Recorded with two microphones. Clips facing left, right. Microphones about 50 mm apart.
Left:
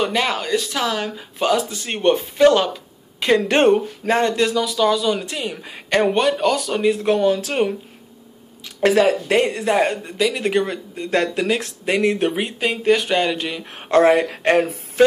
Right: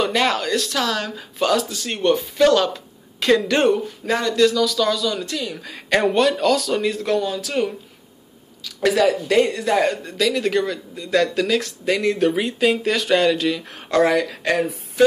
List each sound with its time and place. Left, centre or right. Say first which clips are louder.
0.0 s speech: right 1 dB; centre
3.3 s speech: left 6 dB; left
7.2 s speech: left 4 dB; left
12.5 s speech: left 1 dB; centre
13.7 s speech: left 4 dB; left